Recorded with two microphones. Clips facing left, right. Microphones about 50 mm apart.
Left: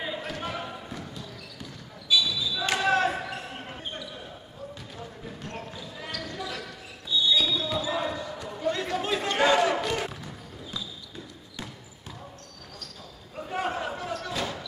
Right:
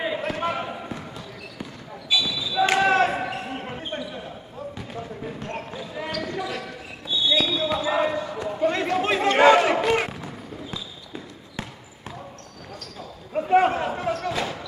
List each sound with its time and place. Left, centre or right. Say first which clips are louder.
0.0 s basketball bounce: right 7 dB; right
5.2 s basketball bounce: right 4 dB; right
10.2 s basketball bounce: right 6 dB; right
13.3 s a sound: right 12 dB; right